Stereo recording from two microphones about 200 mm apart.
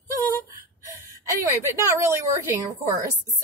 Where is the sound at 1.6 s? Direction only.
15° right (ahead or behind).